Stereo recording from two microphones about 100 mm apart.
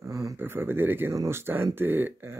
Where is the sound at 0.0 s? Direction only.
35° right (ahead or behind).